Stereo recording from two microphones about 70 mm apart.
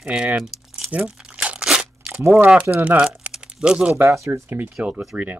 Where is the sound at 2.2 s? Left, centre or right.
Right.